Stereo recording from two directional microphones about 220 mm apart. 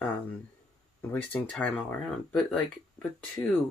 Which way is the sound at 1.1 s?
5° left (ahead or behind).